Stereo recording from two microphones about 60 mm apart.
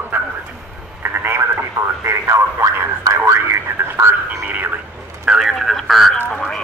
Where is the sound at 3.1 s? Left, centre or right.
Right.